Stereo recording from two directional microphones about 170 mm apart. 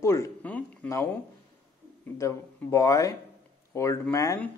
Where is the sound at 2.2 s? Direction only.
15° left (ahead or behind).